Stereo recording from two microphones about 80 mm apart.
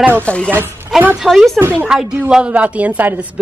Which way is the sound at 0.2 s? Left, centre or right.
Centre.